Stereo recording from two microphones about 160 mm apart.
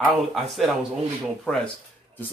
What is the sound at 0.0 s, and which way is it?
Speech, centre (ahead or behind).